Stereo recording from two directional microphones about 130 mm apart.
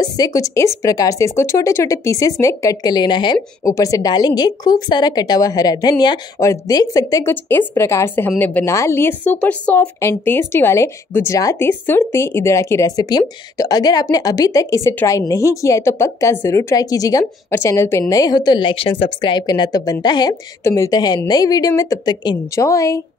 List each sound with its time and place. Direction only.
0.0 s a woman's voice: 30° left (ahead or behind)